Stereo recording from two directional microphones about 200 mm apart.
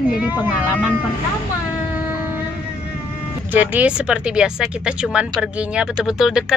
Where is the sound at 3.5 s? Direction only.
10° right (ahead or behind).